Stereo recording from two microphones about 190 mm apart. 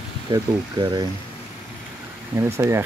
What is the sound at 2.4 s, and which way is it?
Speech, 15° right (ahead or behind).